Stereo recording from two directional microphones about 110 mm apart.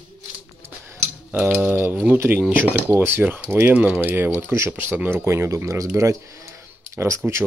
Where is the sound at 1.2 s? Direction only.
15° right (ahead or behind).